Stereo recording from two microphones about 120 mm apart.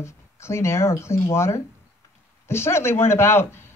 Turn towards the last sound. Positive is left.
turn(degrees=20)  # may be behind; listen again after turning